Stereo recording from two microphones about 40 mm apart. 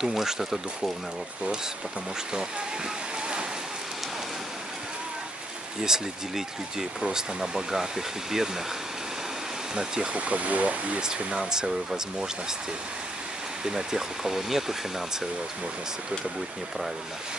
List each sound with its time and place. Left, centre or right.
0.0 s speech: centre
5.8 s speech: centre
10.1 s speech: right
11.3 s speech: centre
13.7 s speech: centre